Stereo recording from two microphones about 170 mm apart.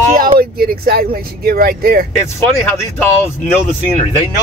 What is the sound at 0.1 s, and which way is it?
Speech, 60° right (ahead or behind).